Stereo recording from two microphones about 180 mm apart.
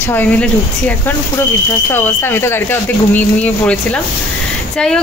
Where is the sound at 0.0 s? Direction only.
10° left (ahead or behind).